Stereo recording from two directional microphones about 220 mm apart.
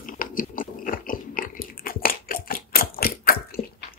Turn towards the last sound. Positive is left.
turn(degrees=45)  # may be behind; listen again after turning